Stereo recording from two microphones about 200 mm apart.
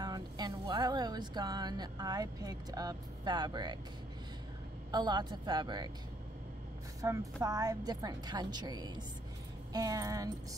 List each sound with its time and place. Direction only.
0.0 s speech: 20° right (ahead or behind)
4.9 s speech: 20° right (ahead or behind)
7.0 s speech: 15° right (ahead or behind)